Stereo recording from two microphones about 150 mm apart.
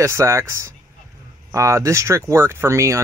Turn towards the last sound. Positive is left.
turn(degrees=-20)  # may be behind; listen again after turning